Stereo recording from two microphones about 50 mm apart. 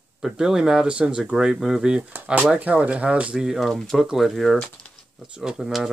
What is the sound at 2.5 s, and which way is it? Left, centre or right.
Speech, right.